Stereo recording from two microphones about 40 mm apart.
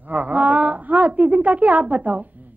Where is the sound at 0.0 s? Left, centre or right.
Right.